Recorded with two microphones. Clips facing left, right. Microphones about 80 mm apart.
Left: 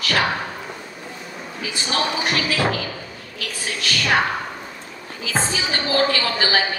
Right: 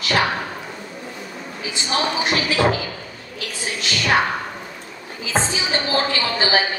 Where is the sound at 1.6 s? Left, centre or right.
Right.